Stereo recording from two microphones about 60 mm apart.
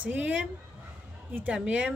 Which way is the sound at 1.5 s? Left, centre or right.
Centre.